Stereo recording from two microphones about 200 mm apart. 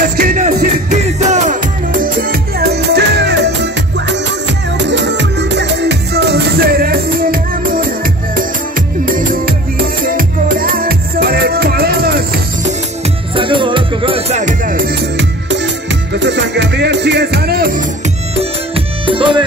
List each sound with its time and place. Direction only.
0.2 s music: 45° right (ahead or behind)
4.8 s music: 60° right (ahead or behind)
13.3 s music: 25° right (ahead or behind); by 17.8 s 45° right (ahead or behind)
19.0 s music: 25° right (ahead or behind)